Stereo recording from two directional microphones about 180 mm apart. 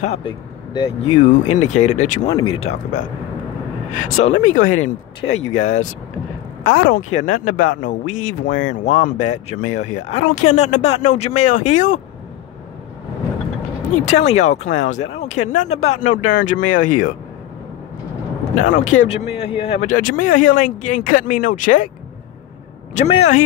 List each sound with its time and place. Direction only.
0.0 s speech: 30° left (ahead or behind)
1.1 s speech: 40° left (ahead or behind)
2.2 s speech: 30° left (ahead or behind)
13.9 s speech: 40° left (ahead or behind)
18.6 s speech: 45° left (ahead or behind)
19.9 s speech: 50° left (ahead or behind)
22.9 s speech: 40° left (ahead or behind)